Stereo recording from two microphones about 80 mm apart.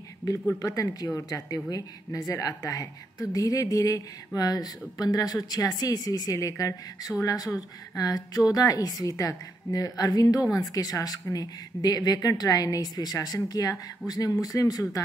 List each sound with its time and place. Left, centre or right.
0.6 s speech: left